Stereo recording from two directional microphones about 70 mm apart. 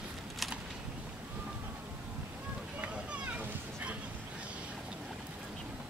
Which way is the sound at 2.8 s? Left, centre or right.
Right.